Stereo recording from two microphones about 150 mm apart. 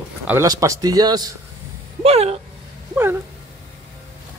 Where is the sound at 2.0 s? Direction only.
45° right (ahead or behind).